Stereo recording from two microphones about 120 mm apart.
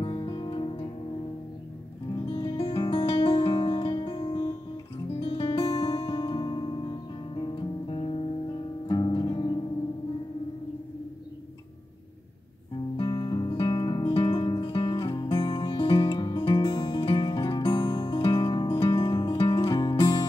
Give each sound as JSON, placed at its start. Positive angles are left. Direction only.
{"t": 0.0, "sound": "music", "side_deg": 40}
{"t": 2.2, "sound": "music", "side_deg": 40}
{"t": 12.9, "sound": "music", "side_deg": 40}